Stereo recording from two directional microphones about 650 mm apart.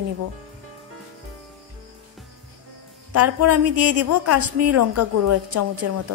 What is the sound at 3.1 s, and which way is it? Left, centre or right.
Speech, right.